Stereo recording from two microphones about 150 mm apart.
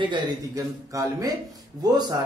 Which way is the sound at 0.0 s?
30° right (ahead or behind).